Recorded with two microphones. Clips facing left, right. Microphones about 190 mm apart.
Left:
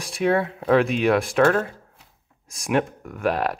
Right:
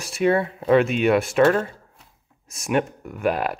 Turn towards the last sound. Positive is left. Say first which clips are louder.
# even
turn(degrees=-5)  # may be behind; listen again after turning